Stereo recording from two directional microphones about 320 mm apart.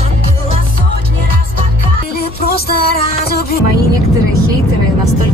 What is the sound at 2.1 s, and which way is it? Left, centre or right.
Music, left.